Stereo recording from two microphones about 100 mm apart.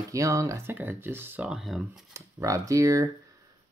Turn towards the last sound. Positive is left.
turn(degrees=-30)  # may be behind; listen again after turning